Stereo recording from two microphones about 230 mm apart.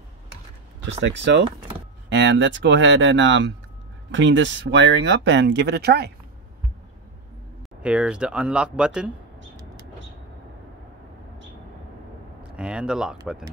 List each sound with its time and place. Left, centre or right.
1.0 s speech: right
7.8 s speech: centre
12.5 s speech: centre